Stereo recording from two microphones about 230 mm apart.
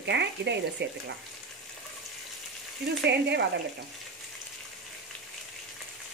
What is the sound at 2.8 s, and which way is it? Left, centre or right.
Speech, right.